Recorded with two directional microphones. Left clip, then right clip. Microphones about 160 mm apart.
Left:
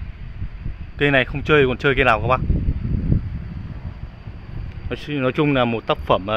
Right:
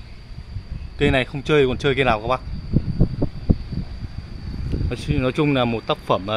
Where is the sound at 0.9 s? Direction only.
5° right (ahead or behind).